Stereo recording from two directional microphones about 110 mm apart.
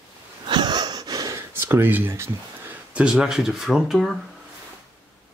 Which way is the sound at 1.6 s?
20° right (ahead or behind).